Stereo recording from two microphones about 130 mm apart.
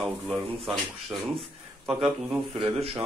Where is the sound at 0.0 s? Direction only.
Centre (ahead or behind).